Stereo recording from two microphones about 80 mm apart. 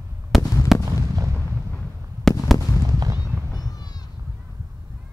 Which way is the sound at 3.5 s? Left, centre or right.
Left.